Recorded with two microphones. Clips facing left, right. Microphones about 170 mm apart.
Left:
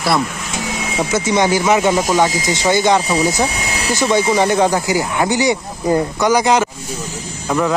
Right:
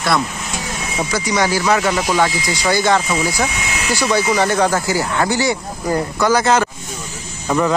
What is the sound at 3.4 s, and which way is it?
Vacuum cleaner, 35° left (ahead or behind).